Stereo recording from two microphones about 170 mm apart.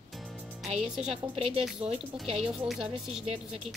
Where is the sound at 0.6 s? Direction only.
40° right (ahead or behind).